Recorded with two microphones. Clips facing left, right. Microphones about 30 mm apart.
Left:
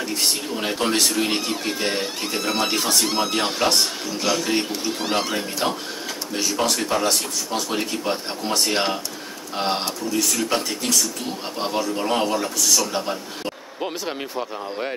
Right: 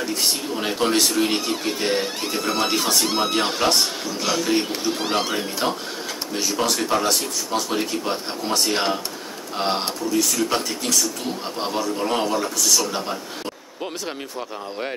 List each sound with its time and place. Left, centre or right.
0.2 s speech: centre